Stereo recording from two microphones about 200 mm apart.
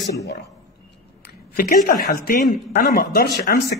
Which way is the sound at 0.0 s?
55° left (ahead or behind).